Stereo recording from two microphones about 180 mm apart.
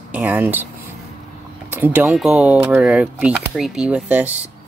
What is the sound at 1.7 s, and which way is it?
Speech, 10° right (ahead or behind).